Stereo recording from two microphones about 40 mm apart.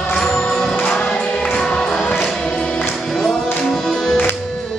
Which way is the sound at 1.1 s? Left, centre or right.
Centre.